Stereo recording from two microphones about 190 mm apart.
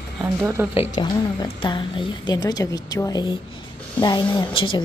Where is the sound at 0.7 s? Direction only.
25° left (ahead or behind).